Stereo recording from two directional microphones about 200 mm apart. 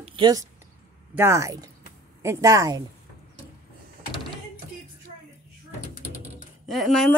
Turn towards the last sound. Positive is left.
turn(degrees=0)  # may be behind; listen again after turning